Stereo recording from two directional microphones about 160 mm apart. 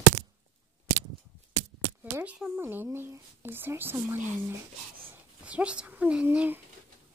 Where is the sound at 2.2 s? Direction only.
10° right (ahead or behind).